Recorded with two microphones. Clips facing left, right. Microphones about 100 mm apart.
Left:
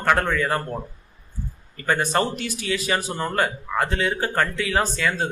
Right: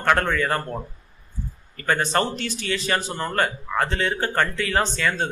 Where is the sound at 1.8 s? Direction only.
10° left (ahead or behind).